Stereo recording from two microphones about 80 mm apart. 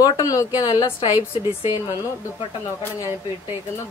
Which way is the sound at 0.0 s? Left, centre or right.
Left.